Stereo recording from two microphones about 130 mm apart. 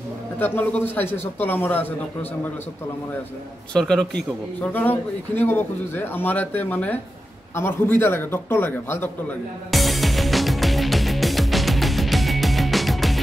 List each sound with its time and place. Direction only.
0.4 s a man's voice: 15° left (ahead or behind)
3.7 s a man's voice: 5° left (ahead or behind)
9.7 s music: centre (ahead or behind)